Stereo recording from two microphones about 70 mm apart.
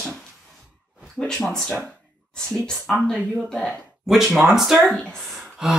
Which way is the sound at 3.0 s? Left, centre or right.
Centre.